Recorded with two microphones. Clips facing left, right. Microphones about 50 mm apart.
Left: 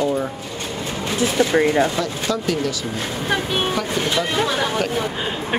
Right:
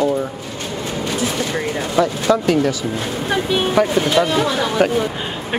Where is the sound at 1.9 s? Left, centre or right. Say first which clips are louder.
Right 7 dB; right.